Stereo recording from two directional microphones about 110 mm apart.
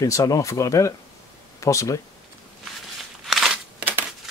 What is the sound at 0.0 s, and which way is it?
Speech, 35° left (ahead or behind).